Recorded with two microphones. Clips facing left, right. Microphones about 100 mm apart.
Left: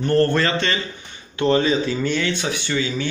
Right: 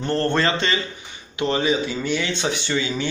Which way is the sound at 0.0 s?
25° right (ahead or behind).